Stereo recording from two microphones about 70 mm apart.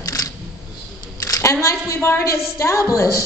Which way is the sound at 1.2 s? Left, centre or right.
Left.